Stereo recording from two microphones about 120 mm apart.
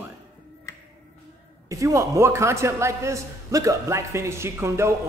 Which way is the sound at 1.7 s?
25° right (ahead or behind).